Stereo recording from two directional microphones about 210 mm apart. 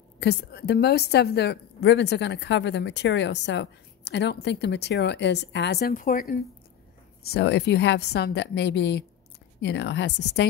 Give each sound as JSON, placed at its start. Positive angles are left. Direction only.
{"t": 0.2, "sound": "a woman's voice", "side_deg": 50}